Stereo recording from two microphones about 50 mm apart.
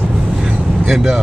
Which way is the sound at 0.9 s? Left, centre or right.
Centre.